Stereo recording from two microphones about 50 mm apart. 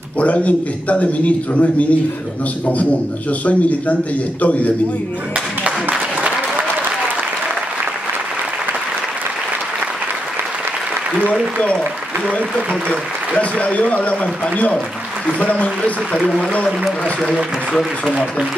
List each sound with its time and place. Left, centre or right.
0.2 s a man's voice: left
12.3 s a man's voice: left